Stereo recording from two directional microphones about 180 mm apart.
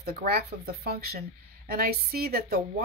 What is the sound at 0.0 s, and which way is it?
A woman's voice, 60° right (ahead or behind).